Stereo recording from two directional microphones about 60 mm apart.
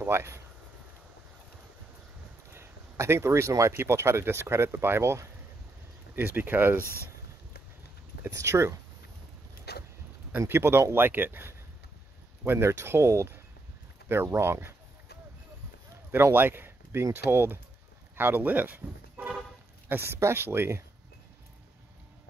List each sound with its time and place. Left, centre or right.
0.0 s speech: right
2.5 s speech: right
6.1 s speech: right
8.2 s speech: right
10.5 s speech: right
16.3 s speech: right
19.9 s speech: right